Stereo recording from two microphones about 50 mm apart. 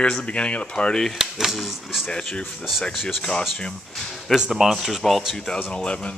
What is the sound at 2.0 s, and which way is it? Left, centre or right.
Speech, centre.